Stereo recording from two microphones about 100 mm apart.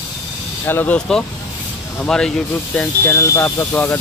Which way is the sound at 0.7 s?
20° left (ahead or behind).